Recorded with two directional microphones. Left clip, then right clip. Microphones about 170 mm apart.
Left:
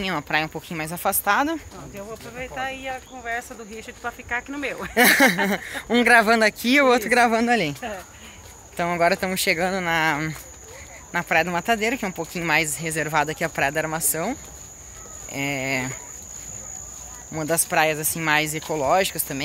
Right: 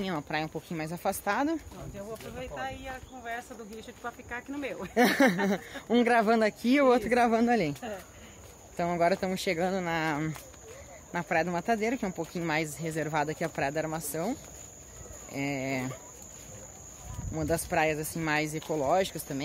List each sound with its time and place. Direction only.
0.0 s speech: 5° right (ahead or behind)
2.0 s speech: 30° left (ahead or behind)
3.7 s speech: 10° left (ahead or behind)
4.9 s speech: 15° right (ahead or behind)
8.7 s speech: 5° right (ahead or behind)
15.3 s speech: 5° right (ahead or behind)
17.3 s speech: 5° right (ahead or behind)